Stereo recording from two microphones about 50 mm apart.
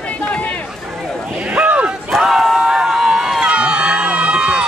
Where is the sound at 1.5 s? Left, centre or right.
Right.